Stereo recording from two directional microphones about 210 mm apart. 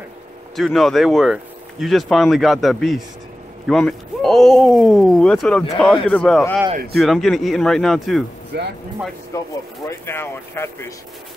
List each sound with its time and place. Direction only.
0.6 s speech: centre (ahead or behind)
8.5 s speech: 50° right (ahead or behind)
9.3 s speech: 15° left (ahead or behind)